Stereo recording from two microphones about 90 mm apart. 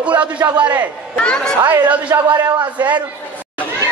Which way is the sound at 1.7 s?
15° right (ahead or behind).